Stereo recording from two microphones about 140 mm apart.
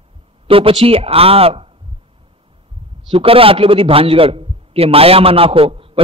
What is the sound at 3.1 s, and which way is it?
A man's voice, 40° right (ahead or behind).